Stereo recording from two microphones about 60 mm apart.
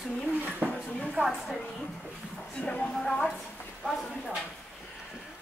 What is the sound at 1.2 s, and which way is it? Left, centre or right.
Speech, centre.